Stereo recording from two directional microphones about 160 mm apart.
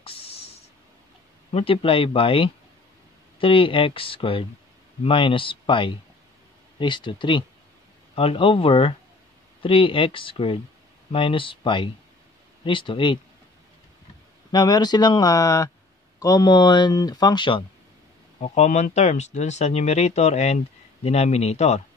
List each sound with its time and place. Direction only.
0.0 s a sound: 35° left (ahead or behind)
1.5 s speech: 35° left (ahead or behind)
14.5 s speech: 25° left (ahead or behind)
18.4 s speech: 45° left (ahead or behind)